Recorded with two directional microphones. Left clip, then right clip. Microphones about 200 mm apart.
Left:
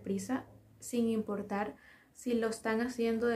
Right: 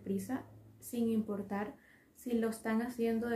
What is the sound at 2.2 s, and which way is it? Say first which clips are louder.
A woman's voice: left 3 dB; 10° left (ahead or behind).